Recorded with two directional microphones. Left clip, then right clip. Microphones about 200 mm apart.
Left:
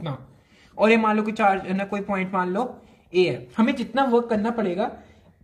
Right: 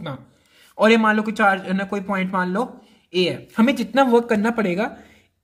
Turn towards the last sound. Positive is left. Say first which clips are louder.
# right 3 dB
turn(degrees=-25)  # may be behind; listen again after turning